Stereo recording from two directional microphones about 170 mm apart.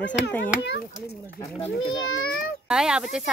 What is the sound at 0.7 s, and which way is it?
Speech, 70° left (ahead or behind).